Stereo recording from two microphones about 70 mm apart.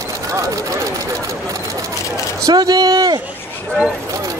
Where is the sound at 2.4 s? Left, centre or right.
Right.